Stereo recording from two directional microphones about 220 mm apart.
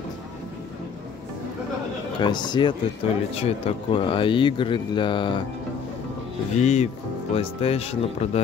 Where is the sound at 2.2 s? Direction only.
20° left (ahead or behind).